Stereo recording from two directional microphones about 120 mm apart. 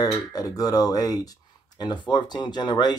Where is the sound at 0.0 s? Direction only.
30° left (ahead or behind).